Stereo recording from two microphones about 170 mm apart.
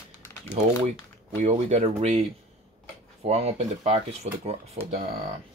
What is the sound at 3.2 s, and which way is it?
Speech, 35° right (ahead or behind).